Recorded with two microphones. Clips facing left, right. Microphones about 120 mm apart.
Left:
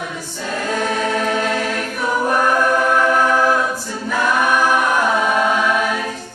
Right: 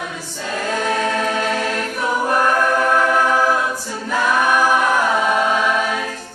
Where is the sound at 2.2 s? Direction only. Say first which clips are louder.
Left 1 dB; 5° left (ahead or behind).